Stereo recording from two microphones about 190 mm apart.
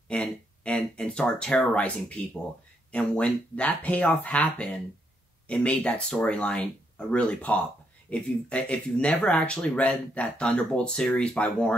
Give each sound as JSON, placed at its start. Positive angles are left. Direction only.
{"t": 0.1, "sound": "speech", "side_deg": 5}